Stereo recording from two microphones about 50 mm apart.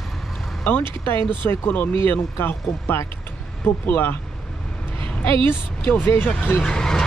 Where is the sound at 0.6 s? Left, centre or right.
Left.